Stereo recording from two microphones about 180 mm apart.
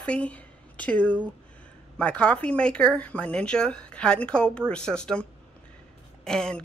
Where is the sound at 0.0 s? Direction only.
5° left (ahead or behind).